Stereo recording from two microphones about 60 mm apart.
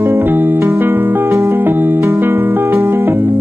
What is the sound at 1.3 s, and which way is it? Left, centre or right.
Music, right.